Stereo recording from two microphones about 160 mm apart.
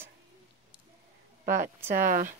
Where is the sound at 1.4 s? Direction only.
60° right (ahead or behind).